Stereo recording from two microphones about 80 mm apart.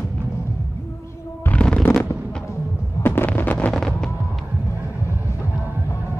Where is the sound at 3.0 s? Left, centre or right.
Left.